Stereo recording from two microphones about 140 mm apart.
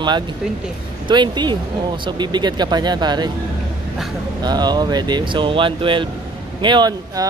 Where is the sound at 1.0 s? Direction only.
35° right (ahead or behind).